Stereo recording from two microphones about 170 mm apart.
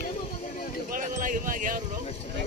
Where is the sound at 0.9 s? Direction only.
50° right (ahead or behind).